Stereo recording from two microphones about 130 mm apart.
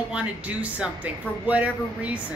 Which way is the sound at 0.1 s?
10° right (ahead or behind).